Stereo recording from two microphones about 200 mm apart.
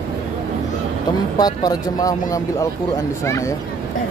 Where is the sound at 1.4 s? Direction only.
20° left (ahead or behind).